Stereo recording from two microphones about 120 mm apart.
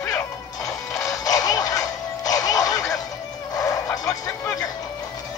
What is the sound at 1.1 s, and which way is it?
Music, 30° left (ahead or behind).